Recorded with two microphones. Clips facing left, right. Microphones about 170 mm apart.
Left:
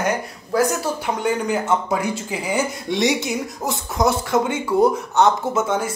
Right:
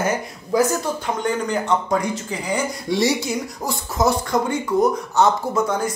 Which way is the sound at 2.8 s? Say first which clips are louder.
Right 2 dB; 20° left (ahead or behind).